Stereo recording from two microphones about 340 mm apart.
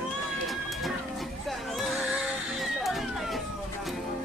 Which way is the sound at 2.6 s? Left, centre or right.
Centre.